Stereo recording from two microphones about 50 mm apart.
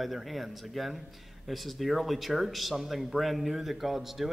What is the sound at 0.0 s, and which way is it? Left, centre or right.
A man's voice, centre.